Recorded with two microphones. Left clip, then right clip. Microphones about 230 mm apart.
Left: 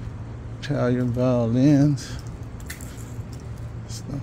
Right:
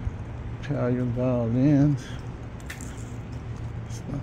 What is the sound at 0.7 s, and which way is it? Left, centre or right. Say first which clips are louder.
Speech: left 4 dB; left.